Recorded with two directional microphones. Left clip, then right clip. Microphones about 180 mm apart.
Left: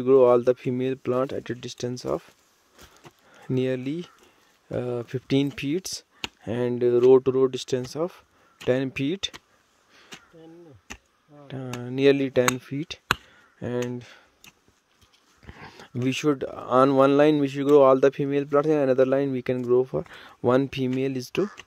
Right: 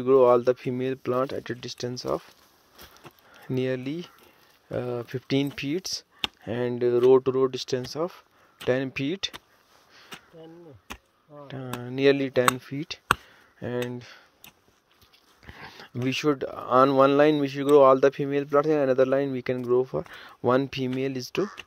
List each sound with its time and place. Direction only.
0.0 s speech: 40° left (ahead or behind)
11.4 s speech: 35° left (ahead or behind)
15.4 s speech: 45° left (ahead or behind)